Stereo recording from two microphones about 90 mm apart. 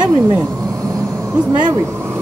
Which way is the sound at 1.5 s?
55° right (ahead or behind).